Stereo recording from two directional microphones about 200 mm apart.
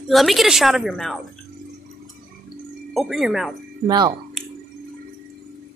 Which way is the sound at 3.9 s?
20° right (ahead or behind).